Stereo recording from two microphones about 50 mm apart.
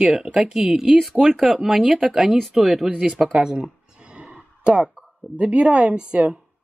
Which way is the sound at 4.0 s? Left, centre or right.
Right.